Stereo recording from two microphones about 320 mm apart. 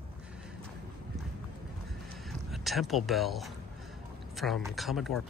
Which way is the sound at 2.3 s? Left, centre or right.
Centre.